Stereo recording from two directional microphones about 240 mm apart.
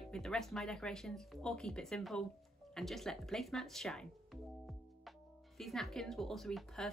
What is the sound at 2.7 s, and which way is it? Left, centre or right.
Music, centre.